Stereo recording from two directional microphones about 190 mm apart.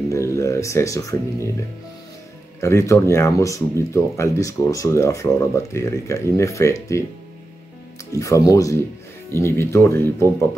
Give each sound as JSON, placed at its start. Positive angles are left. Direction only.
{"t": 0.1, "sound": "speech", "side_deg": 15}
{"t": 2.6, "sound": "speech", "side_deg": 15}
{"t": 8.1, "sound": "speech", "side_deg": 15}